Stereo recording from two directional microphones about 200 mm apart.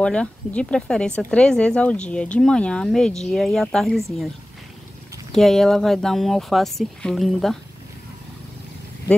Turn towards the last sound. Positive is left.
turn(degrees=0)  # may be behind; listen again after turning